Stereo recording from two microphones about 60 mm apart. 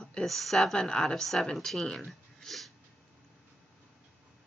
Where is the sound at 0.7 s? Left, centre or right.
Centre.